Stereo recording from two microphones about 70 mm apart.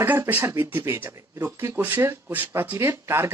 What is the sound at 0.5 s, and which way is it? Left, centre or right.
Speech, right.